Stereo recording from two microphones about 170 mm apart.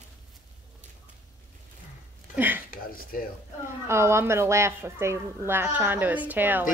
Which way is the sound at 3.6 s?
15° right (ahead or behind).